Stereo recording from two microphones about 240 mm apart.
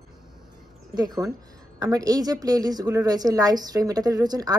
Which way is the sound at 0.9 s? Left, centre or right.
Centre.